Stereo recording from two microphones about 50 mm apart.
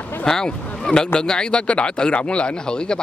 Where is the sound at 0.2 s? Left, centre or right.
Centre.